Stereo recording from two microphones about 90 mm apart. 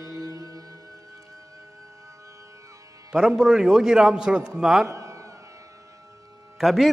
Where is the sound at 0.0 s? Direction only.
40° right (ahead or behind).